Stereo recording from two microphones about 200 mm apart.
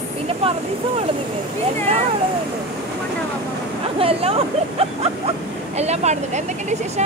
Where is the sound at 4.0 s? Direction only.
30° right (ahead or behind).